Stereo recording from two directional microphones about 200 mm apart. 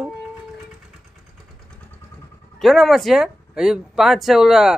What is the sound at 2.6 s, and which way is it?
Speech, centre (ahead or behind).